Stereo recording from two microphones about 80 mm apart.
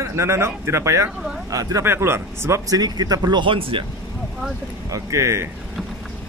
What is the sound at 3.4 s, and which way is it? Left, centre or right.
Speech, right.